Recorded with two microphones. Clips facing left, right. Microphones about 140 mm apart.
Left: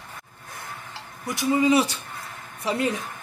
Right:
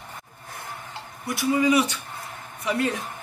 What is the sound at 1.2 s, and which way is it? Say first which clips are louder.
Speech: left 1 dB; 25° left (ahead or behind).